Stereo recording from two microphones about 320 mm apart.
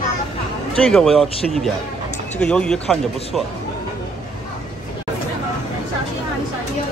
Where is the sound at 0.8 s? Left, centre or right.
Centre.